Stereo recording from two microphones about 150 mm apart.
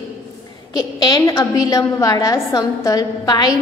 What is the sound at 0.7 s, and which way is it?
A woman's voice, 25° left (ahead or behind).